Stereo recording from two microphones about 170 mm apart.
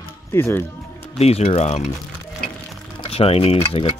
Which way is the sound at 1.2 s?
40° left (ahead or behind).